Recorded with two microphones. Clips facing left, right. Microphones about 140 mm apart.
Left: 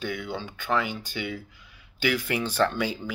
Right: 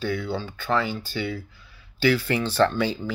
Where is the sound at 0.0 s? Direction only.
15° left (ahead or behind).